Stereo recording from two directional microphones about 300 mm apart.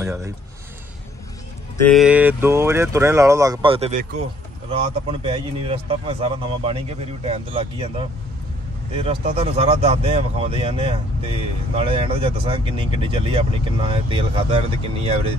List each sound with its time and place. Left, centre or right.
0.0 s speech: centre
1.9 s speech: centre